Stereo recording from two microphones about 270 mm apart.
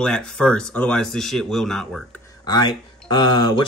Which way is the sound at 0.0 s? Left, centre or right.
Centre.